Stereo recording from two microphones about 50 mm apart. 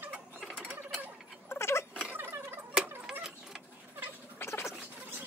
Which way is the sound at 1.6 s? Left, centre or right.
Left.